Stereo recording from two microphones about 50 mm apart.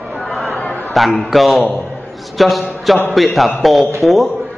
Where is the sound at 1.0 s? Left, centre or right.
Centre.